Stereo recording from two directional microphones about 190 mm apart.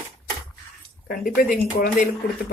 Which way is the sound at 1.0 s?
50° left (ahead or behind).